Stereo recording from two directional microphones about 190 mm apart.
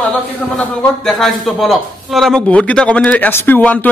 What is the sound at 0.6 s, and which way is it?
A man's voice, 5° left (ahead or behind).